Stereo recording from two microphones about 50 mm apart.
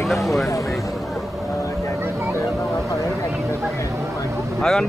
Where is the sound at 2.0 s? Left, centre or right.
Right.